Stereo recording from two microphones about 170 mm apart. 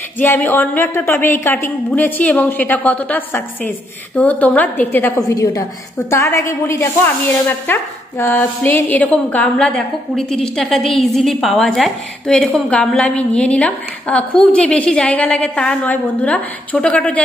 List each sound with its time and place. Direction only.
0.2 s a woman's voice: 10° left (ahead or behind)